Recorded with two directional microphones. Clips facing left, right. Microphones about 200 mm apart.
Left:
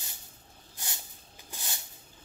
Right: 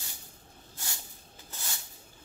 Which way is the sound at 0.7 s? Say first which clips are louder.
Even; 20° left (ahead or behind).